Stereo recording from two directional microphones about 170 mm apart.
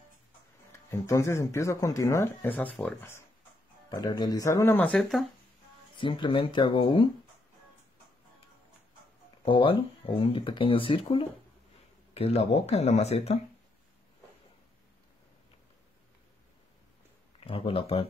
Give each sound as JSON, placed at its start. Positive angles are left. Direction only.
{"t": 0.7, "sound": "speech", "side_deg": 15}
{"t": 5.9, "sound": "speech", "side_deg": 30}
{"t": 9.4, "sound": "speech", "side_deg": 30}
{"t": 17.4, "sound": "speech", "side_deg": 35}